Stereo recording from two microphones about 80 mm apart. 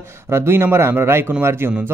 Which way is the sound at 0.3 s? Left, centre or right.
Right.